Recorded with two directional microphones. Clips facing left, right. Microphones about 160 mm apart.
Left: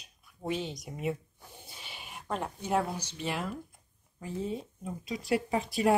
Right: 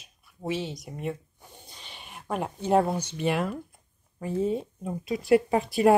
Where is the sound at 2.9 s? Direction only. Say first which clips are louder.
Right 8 dB; 55° right (ahead or behind).